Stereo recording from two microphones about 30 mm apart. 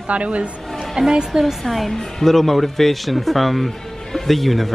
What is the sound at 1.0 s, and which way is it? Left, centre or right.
Speech, right.